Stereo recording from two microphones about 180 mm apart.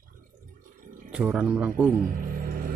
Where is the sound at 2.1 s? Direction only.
55° right (ahead or behind).